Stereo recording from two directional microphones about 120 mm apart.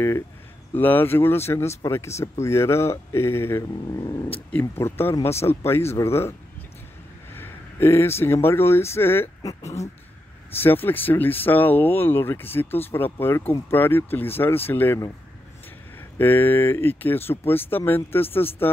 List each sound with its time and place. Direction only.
0.7 s speech: 15° left (ahead or behind)
4.5 s speech: 20° left (ahead or behind)
7.3 s speech: 20° left (ahead or behind)
10.6 s speech: 15° left (ahead or behind)
16.2 s speech: 15° left (ahead or behind)